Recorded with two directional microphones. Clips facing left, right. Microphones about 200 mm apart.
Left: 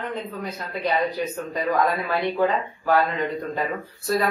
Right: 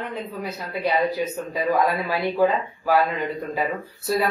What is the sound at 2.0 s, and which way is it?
Speech, 5° right (ahead or behind).